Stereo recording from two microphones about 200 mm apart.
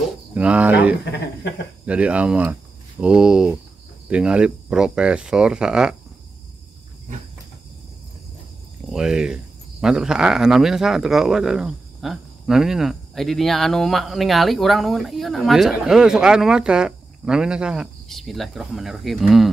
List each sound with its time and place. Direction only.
0.3 s speech: 5° right (ahead or behind)
1.0 s speech: 60° left (ahead or behind)
1.9 s speech: 5° right (ahead or behind)
8.8 s speech: 5° right (ahead or behind)